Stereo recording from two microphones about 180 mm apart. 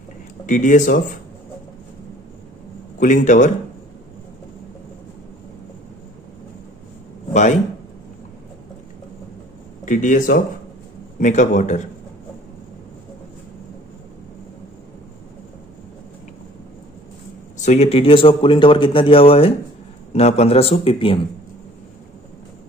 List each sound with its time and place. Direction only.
0.5 s a man's voice: 45° left (ahead or behind)
3.0 s a man's voice: 45° left (ahead or behind)
9.8 s a man's voice: 45° left (ahead or behind)
17.6 s speech: 40° left (ahead or behind)